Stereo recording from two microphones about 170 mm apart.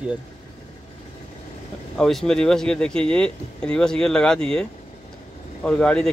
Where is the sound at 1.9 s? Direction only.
Centre (ahead or behind).